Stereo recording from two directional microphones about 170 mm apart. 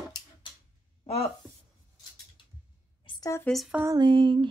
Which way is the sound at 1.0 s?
35° left (ahead or behind).